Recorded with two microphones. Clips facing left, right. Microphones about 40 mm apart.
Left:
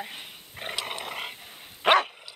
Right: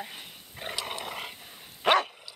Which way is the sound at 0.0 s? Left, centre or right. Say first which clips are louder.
Left 2 dB; left.